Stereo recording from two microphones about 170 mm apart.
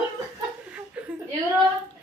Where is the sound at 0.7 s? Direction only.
5° right (ahead or behind).